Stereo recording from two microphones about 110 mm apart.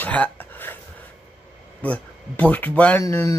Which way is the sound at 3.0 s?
25° left (ahead or behind).